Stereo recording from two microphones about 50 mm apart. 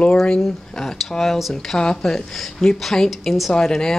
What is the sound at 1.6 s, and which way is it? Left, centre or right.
Speech, centre.